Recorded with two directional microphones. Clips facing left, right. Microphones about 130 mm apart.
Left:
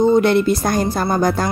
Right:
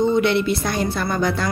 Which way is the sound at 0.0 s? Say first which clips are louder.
Left 4 dB; 40° left (ahead or behind).